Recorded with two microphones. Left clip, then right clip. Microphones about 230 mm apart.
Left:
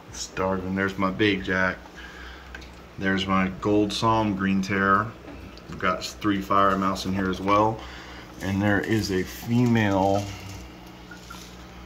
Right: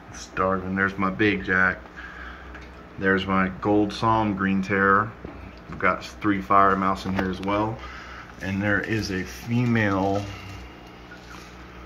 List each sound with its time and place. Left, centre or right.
0.4 s speech: centre
3.0 s speech: centre